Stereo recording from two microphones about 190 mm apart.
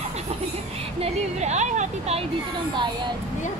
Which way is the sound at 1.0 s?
35° right (ahead or behind).